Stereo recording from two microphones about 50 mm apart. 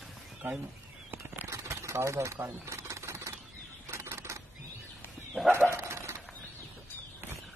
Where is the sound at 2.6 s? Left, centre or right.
Right.